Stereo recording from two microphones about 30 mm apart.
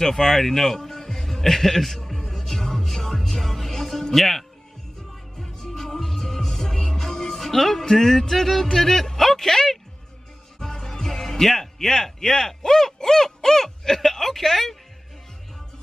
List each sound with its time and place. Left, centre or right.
0.0 s a man's voice: centre
2.3 s music: centre
4.1 s speech: centre
5.1 s music: centre
7.8 s speech: centre
10.6 s music: centre
11.1 s speech: centre